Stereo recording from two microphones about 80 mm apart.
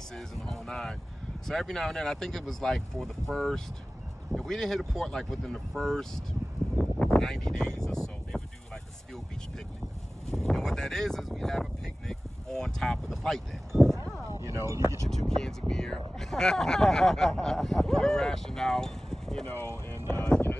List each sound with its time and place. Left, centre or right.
0.1 s speech: centre
10.3 s speech: centre
14.5 s speech: right
15.0 s speech: centre
20.1 s vehicle: left